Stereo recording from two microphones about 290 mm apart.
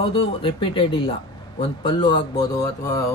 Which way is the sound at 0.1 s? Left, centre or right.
Centre.